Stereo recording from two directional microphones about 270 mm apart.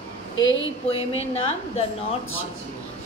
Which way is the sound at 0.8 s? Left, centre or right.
Left.